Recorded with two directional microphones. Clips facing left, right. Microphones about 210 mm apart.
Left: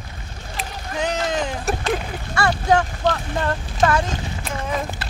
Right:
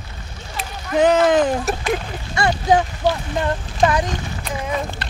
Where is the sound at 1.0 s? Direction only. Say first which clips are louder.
Right 9 dB; 55° right (ahead or behind).